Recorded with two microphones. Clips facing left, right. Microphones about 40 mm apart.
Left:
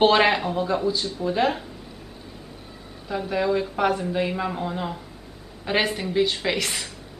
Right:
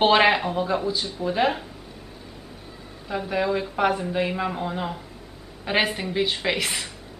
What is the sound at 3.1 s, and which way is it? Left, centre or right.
Speech, centre.